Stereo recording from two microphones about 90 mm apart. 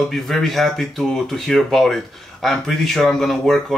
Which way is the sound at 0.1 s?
5° left (ahead or behind).